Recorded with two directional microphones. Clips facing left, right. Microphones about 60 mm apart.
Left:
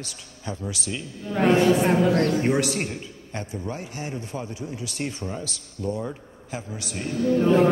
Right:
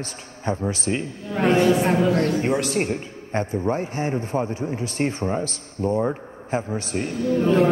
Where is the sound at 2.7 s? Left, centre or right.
Right.